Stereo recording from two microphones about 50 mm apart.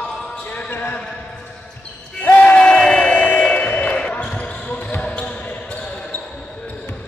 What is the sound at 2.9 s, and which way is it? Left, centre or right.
Crowd, centre.